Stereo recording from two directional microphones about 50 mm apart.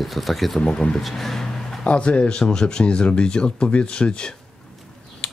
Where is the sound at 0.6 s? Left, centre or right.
Centre.